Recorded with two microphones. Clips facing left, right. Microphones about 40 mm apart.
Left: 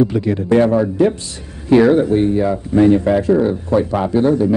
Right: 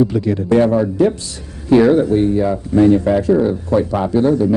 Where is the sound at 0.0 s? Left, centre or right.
Left.